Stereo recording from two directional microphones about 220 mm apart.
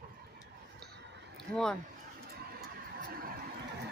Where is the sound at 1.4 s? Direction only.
5° left (ahead or behind).